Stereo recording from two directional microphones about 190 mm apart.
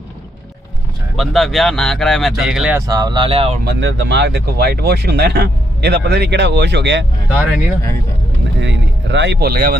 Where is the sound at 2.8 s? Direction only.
20° right (ahead or behind).